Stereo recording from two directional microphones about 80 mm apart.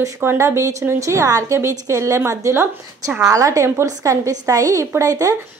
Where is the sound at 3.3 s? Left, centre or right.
Right.